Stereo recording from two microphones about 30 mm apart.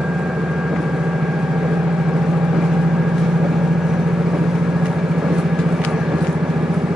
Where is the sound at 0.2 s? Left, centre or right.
Right.